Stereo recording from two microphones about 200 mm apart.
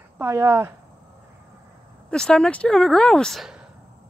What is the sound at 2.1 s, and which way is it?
Speech, 5° left (ahead or behind).